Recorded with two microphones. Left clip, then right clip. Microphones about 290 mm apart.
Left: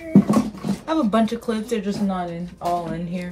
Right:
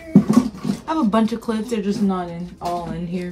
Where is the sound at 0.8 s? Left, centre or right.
Centre.